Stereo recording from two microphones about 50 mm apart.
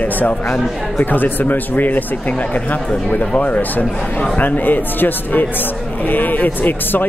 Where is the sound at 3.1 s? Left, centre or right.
Left.